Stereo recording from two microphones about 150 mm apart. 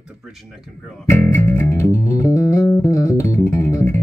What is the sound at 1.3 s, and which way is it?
Music, 15° left (ahead or behind).